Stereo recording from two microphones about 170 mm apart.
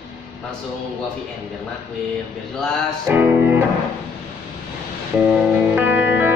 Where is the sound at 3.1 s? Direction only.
10° right (ahead or behind).